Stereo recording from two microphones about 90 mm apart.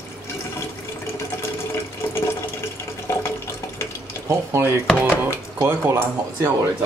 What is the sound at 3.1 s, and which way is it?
Water, 30° left (ahead or behind).